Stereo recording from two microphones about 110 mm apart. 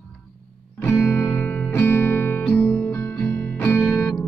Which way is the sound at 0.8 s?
20° left (ahead or behind).